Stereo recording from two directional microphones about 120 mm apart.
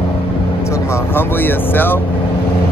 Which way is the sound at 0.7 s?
20° left (ahead or behind).